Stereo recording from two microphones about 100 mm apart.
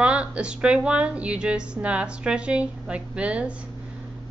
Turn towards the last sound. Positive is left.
turn(degrees=-10)  # may be behind; listen again after turning